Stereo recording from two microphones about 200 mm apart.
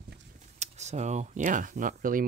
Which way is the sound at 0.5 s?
35° right (ahead or behind).